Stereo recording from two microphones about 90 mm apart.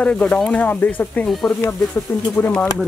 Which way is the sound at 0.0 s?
15° left (ahead or behind).